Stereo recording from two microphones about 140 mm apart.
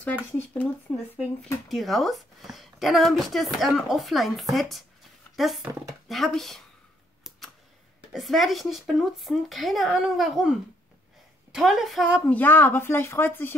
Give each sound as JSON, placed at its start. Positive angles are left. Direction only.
{"t": 0.0, "sound": "a woman's voice", "side_deg": 10}
{"t": 7.2, "sound": "a sound", "side_deg": 0}
{"t": 8.1, "sound": "a woman's voice", "side_deg": 0}
{"t": 11.5, "sound": "a woman's voice", "side_deg": 0}
{"t": 12.3, "sound": "speech", "side_deg": 15}